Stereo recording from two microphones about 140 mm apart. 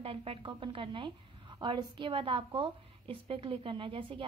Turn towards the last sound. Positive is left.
turn(degrees=-40)  # may be behind; listen again after turning